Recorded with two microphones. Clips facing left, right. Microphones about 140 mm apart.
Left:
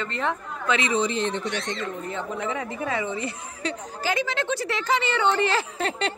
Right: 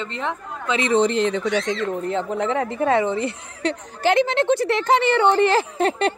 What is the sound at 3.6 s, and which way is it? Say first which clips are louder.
A woman's voice: right 8 dB; 65° right (ahead or behind).